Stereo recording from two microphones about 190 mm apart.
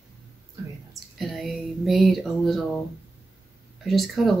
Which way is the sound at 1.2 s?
Centre (ahead or behind).